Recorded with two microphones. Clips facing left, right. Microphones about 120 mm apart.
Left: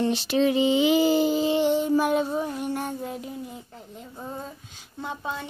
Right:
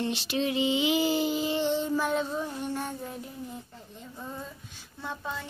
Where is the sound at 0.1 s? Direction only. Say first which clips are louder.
Left 7 dB; 40° left (ahead or behind).